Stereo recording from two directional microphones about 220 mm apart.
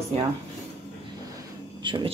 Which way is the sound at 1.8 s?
20° right (ahead or behind).